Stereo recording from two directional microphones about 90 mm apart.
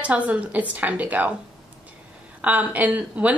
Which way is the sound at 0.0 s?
15° right (ahead or behind).